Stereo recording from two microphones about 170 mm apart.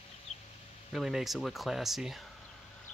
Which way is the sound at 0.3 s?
40° left (ahead or behind).